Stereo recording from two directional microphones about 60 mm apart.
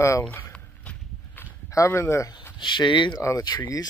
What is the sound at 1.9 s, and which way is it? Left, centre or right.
Speech, left.